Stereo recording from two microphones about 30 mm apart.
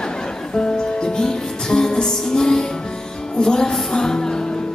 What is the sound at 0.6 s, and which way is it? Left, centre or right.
Music, left.